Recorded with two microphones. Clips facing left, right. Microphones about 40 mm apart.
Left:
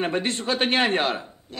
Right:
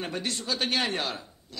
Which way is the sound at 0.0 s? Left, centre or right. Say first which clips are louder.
Left 8 dB; left.